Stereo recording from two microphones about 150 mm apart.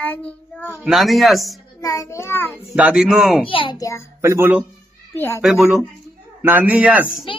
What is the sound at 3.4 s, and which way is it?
Speech, 35° left (ahead or behind).